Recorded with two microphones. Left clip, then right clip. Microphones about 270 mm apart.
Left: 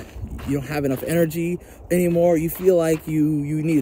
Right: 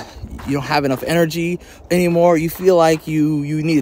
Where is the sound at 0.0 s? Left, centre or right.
Centre.